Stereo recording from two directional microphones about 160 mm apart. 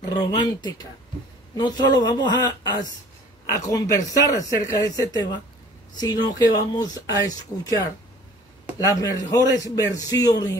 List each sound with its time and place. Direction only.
0.0 s a man's voice: 25° left (ahead or behind)